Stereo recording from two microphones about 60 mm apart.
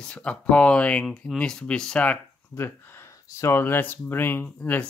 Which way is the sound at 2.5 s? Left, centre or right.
Left.